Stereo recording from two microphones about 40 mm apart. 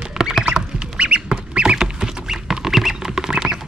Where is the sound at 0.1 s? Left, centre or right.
Centre.